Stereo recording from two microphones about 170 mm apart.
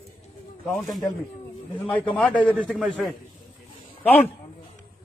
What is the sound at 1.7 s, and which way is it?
A man's voice, 10° left (ahead or behind).